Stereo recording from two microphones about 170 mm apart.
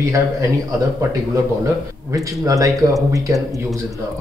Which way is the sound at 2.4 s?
20° right (ahead or behind).